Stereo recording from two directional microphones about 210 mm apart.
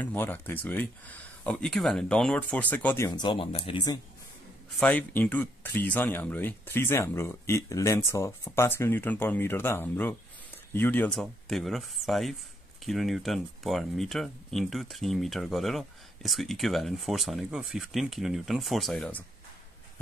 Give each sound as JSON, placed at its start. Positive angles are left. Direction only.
{"t": 0.0, "sound": "speech", "side_deg": 10}
{"t": 3.1, "sound": "speech", "side_deg": 20}
{"t": 4.7, "sound": "speech", "side_deg": 5}